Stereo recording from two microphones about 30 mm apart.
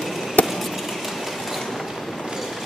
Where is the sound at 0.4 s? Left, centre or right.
Left.